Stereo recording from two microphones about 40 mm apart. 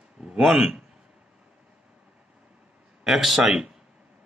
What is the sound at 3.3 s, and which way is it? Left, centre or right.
Speech, centre.